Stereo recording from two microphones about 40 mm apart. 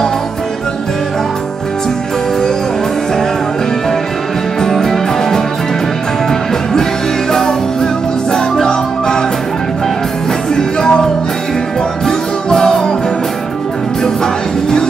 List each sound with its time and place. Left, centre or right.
4.6 s music: centre
7.3 s music: centre
10.5 s music: centre
12.4 s music: centre
14.0 s music: centre